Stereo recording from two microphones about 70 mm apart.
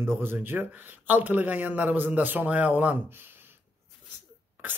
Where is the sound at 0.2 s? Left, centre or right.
Right.